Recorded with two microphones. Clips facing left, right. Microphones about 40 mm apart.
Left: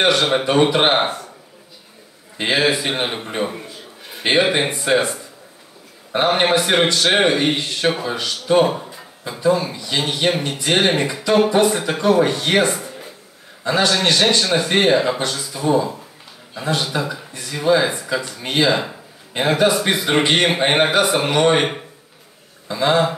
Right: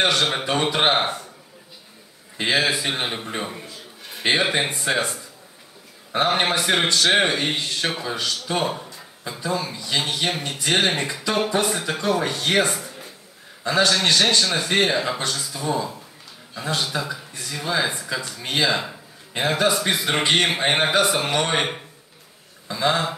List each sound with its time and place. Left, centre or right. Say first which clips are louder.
0.0 s a man's voice: left 4 dB; centre
2.3 s a man's voice: left 3 dB; left
8.5 s a sound: left 11 dB; centre
9.4 s a man's voice: left 9 dB; centre
16.5 s a man's voice: left 4 dB; left
18.0 s speech: left 5 dB; centre
18.4 s speech: left 3 dB; left
18.7 s a man's voice: left 5 dB; centre
19.3 s a man's voice: left 4 dB; centre